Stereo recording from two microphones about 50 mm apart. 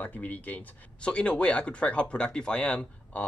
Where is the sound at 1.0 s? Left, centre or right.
Left.